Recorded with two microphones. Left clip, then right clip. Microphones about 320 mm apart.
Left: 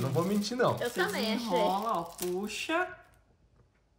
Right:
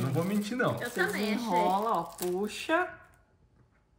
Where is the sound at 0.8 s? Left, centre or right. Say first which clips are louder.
Even; left.